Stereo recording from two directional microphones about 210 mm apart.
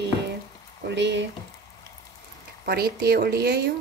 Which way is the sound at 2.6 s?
50° right (ahead or behind).